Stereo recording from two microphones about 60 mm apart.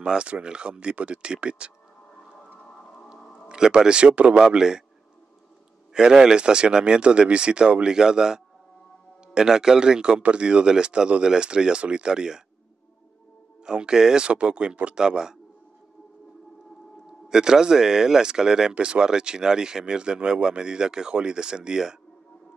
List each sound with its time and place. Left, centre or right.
0.0 s speech: centre
2.6 s music: centre
3.4 s speech: centre
5.9 s speech: centre
13.7 s speech: centre
17.3 s speech: centre